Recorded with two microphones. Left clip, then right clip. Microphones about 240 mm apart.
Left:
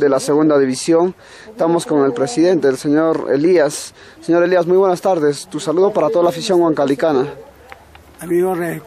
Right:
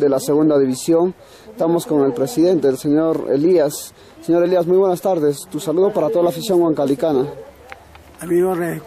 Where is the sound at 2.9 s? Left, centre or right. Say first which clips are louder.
Left 2 dB; left.